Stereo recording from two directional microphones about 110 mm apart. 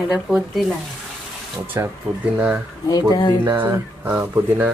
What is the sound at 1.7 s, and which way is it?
Speech, 25° right (ahead or behind).